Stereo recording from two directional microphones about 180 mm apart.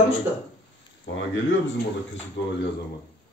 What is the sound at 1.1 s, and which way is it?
Speech, 90° left.